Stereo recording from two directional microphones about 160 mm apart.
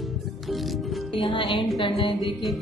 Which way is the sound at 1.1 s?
30° left (ahead or behind).